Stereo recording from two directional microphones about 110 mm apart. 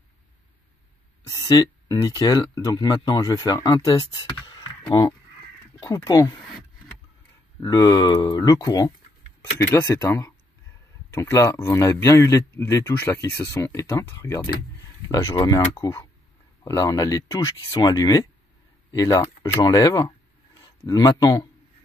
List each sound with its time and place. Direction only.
1.2 s speech: 30° left (ahead or behind)
4.8 s speech: 40° left (ahead or behind)
7.6 s speech: 35° left (ahead or behind)
9.8 s speech: 20° left (ahead or behind)